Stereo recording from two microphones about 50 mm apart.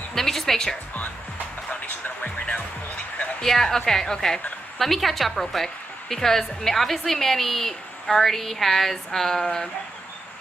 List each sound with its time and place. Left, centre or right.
0.1 s music: centre
1.7 s speech: left
3.4 s a woman's voice: centre